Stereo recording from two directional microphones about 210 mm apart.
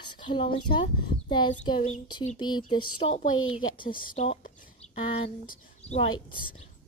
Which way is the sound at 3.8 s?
40° left (ahead or behind).